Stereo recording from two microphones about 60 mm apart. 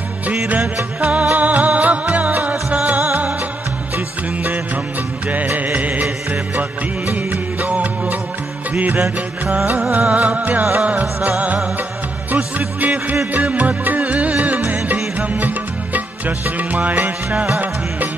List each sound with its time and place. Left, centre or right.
1.0 s music: right
5.3 s music: right